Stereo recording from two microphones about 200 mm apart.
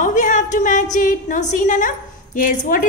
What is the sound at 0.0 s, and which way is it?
A woman's voice, 40° left (ahead or behind).